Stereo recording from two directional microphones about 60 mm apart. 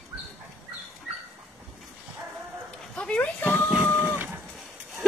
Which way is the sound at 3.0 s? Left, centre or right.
Centre.